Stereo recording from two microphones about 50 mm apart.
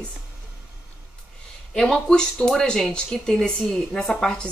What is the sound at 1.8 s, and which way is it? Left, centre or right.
A woman's voice, centre.